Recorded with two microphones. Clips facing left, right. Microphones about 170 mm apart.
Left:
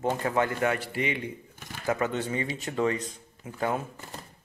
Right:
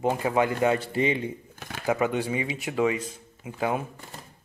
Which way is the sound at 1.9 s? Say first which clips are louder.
Right 3 dB; 15° right (ahead or behind).